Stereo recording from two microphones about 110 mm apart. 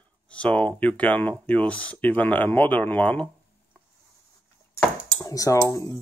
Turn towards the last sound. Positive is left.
turn(degrees=30)  # may be behind; listen again after turning